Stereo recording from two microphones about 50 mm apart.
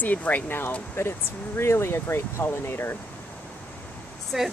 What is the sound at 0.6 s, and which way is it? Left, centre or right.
Speech, left.